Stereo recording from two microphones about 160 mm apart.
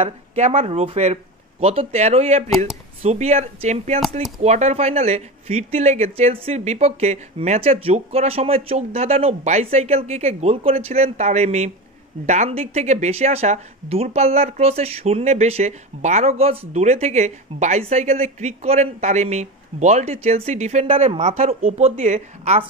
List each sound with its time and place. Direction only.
0.0 s a woman's voice: 40° right (ahead or behind)